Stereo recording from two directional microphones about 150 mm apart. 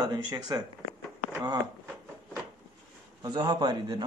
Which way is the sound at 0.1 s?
25° right (ahead or behind).